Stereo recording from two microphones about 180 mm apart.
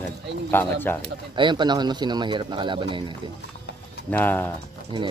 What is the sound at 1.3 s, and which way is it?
Speech, 25° right (ahead or behind).